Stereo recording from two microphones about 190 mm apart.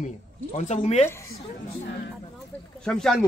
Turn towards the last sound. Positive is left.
turn(degrees=5)  # may be behind; listen again after turning